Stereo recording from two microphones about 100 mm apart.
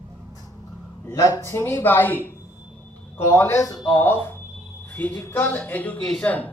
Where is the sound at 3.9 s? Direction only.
25° left (ahead or behind).